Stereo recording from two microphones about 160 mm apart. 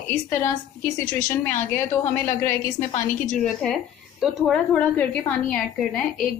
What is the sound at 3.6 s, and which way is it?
A woman's voice, centre (ahead or behind).